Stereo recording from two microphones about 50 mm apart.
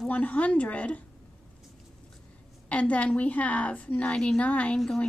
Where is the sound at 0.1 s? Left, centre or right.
Left.